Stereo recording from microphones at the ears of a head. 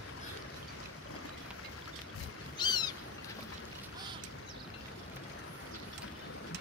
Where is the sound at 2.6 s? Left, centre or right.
Left.